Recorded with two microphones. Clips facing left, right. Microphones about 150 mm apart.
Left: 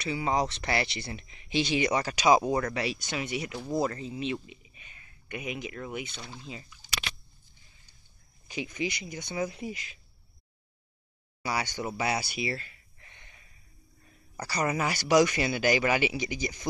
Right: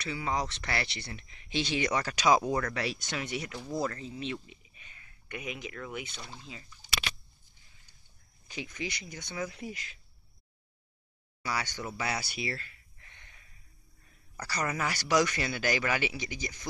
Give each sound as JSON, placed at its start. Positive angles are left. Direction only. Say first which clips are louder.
{"t": 0.0, "sound": "speech", "louder": "left 5 dB", "side_deg": 20}
{"t": 6.1, "sound": "speech", "louder": "left 2 dB", "side_deg": 0}
{"t": 8.5, "sound": "speech", "louder": "left 5 dB", "side_deg": 15}
{"t": 11.4, "sound": "speech", "louder": "left 3 dB", "side_deg": 15}
{"t": 11.9, "sound": "a sound", "louder": "left 5 dB", "side_deg": 20}
{"t": 14.3, "sound": "speech", "louder": "left 4 dB", "side_deg": 15}